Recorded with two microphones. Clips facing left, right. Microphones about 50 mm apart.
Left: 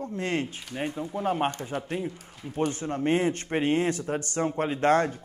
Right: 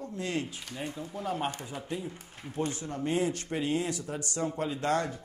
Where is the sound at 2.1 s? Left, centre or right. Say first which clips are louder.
Left 3 dB; right.